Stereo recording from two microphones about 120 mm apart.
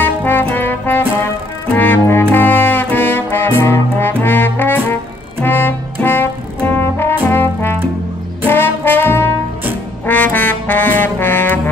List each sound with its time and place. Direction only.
0.0 s trombone: 15° left (ahead or behind)
1.7 s music: 15° left (ahead or behind)
5.4 s brass instrument: 15° left (ahead or behind)
7.2 s trombone: 15° left (ahead or behind)
8.5 s brass instrument: 15° left (ahead or behind)
10.0 s trombone: 15° left (ahead or behind)